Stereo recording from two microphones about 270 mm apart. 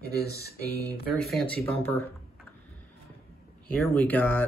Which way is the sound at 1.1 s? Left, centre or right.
Centre.